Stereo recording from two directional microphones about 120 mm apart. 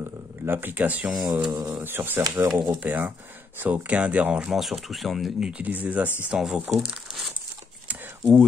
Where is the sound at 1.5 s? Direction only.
30° right (ahead or behind).